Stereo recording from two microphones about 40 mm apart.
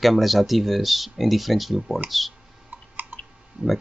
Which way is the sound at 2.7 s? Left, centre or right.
Right.